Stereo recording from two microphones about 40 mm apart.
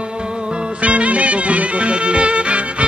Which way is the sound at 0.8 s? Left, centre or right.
Right.